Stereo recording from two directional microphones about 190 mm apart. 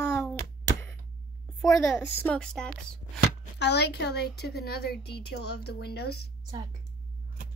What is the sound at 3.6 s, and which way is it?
Speech, 60° left (ahead or behind).